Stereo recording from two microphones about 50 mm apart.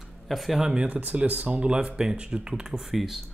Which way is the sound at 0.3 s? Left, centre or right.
Centre.